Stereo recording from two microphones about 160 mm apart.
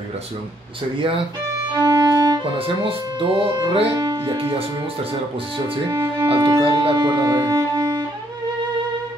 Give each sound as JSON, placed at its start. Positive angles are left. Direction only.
{"t": 1.7, "sound": "speech", "side_deg": -25}
{"t": 3.9, "sound": "speech", "side_deg": -25}
{"t": 6.2, "sound": "speech", "side_deg": -30}